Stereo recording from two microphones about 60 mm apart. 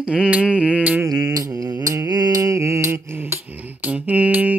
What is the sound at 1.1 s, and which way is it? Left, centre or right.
Music, right.